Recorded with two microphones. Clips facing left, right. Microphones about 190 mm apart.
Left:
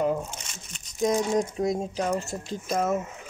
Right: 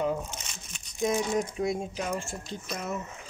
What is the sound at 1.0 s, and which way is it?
Speech, 40° left (ahead or behind).